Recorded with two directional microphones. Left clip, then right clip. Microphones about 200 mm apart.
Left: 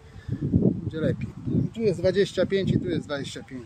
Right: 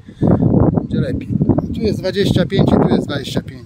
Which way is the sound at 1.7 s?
45° right (ahead or behind).